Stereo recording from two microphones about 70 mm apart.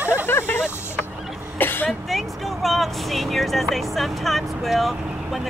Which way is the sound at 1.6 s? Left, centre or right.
Left.